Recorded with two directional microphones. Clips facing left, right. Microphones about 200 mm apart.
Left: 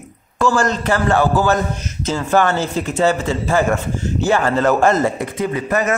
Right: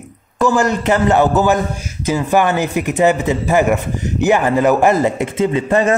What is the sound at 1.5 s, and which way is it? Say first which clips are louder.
A man's voice: right 1 dB; 10° right (ahead or behind).